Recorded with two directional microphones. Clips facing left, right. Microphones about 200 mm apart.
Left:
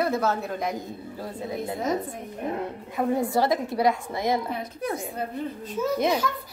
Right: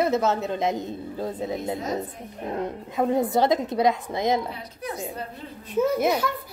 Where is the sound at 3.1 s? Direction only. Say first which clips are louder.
Right 3 dB; 20° right (ahead or behind).